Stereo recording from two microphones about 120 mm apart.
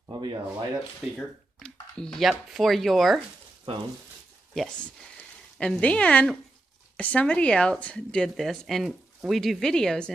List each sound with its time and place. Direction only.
0.0 s speech: 40° right (ahead or behind)
1.1 s speech: 5° left (ahead or behind)
4.6 s speech: 5° left (ahead or behind)